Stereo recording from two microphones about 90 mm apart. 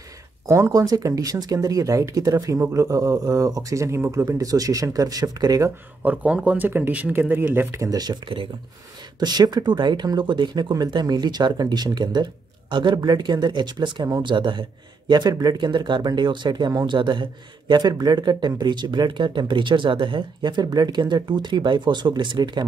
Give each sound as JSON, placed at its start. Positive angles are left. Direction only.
{"t": 0.5, "sound": "speech", "side_deg": -35}
{"t": 6.0, "sound": "speech", "side_deg": -15}
{"t": 7.8, "sound": "speech", "side_deg": -45}
{"t": 9.2, "sound": "speech", "side_deg": -50}